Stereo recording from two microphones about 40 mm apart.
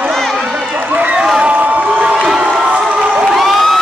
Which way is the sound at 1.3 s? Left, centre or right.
Right.